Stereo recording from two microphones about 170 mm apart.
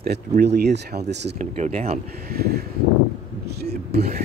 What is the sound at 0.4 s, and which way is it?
Speech, 75° right (ahead or behind).